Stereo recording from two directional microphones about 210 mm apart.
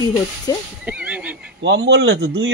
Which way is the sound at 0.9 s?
5° right (ahead or behind).